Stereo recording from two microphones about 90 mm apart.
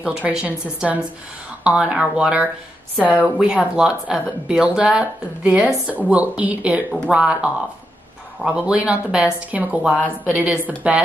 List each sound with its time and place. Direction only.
0.0 s a woman's voice: 10° right (ahead or behind)